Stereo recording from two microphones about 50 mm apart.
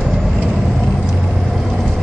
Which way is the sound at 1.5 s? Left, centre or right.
Centre.